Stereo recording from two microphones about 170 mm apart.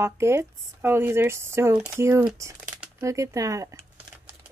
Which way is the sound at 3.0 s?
20° right (ahead or behind).